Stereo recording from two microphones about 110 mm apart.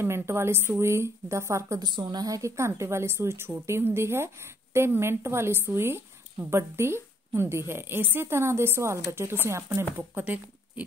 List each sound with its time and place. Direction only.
0.0 s a woman's voice: 20° right (ahead or behind)
1.8 s a woman's voice: 40° right (ahead or behind); by 10.4 s 15° right (ahead or behind)